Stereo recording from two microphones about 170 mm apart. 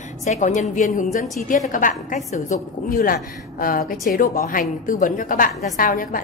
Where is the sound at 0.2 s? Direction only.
45° left (ahead or behind).